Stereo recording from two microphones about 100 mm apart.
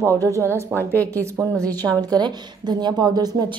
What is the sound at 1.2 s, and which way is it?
Speech, 30° right (ahead or behind).